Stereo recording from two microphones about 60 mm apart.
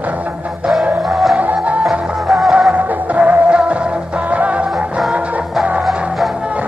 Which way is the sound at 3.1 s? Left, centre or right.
Right.